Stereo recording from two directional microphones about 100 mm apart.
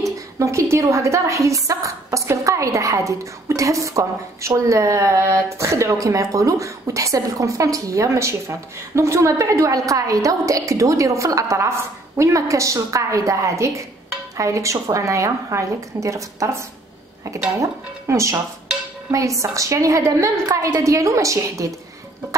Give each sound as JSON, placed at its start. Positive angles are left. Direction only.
{"t": 0.0, "sound": "a woman's voice", "side_deg": -30}